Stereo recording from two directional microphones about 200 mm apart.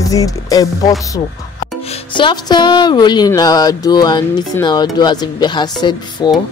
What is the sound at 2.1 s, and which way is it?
A woman's voice, 20° left (ahead or behind).